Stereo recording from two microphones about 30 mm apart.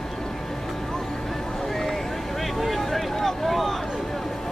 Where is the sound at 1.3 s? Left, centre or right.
Centre.